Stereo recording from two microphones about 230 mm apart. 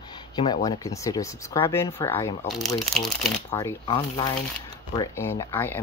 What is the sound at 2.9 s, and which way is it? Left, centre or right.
Speech, centre.